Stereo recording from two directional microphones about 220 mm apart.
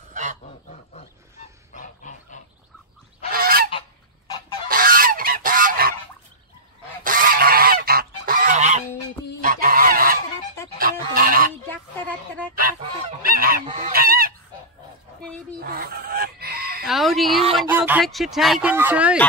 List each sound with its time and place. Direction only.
0.1 s goose: 35° right (ahead or behind)
1.7 s goose: 35° left (ahead or behind)
3.3 s goose: 40° right (ahead or behind)
4.6 s goose: 40° right (ahead or behind)
7.0 s goose: 40° right (ahead or behind)
10.8 s fowl: 40° right (ahead or behind)
13.2 s fowl: 40° right (ahead or behind)
13.7 s goose: 35° right (ahead or behind)
15.6 s fowl: 45° right (ahead or behind)
16.8 s chicken: centre (ahead or behind)
17.6 s speech: 10° right (ahead or behind)